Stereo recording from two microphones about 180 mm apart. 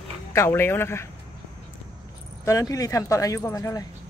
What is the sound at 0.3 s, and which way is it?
Speech, 15° left (ahead or behind).